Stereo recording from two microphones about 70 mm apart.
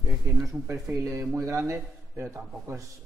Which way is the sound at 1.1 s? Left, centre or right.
Right.